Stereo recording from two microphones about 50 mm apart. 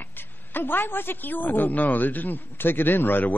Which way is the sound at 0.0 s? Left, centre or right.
Left.